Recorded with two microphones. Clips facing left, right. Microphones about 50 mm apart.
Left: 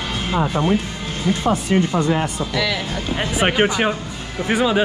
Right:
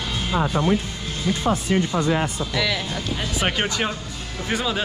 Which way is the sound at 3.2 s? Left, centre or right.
Left.